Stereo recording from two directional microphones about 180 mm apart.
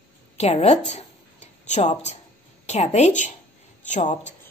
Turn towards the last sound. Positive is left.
turn(degrees=40)  # may be behind; listen again after turning